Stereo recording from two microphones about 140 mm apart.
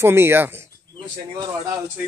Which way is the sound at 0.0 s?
15° right (ahead or behind).